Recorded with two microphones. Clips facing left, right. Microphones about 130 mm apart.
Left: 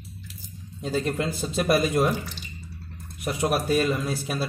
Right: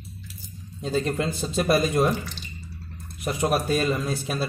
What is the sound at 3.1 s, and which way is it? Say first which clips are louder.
A man's voice: right 1 dB; 5° left (ahead or behind).